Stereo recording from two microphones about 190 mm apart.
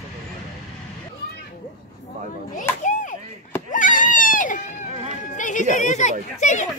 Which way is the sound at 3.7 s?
45° left (ahead or behind).